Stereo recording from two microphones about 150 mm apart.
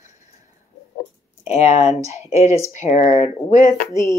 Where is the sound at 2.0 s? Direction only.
20° right (ahead or behind).